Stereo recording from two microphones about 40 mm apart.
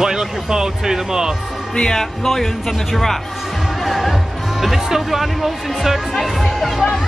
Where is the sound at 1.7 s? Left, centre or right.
Centre.